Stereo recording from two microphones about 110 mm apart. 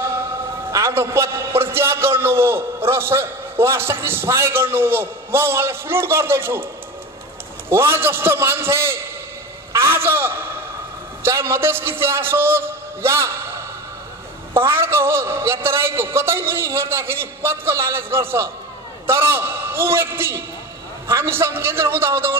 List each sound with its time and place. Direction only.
0.7 s a man's voice: 25° right (ahead or behind)
7.7 s a man's voice: 20° right (ahead or behind)
9.7 s a sound: 20° right (ahead or behind)
11.2 s a man's voice: 25° right (ahead or behind)
14.5 s a man's voice: 20° right (ahead or behind)